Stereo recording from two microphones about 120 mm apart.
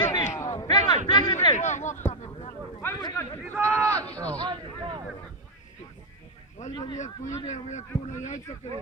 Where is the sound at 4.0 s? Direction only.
10° left (ahead or behind).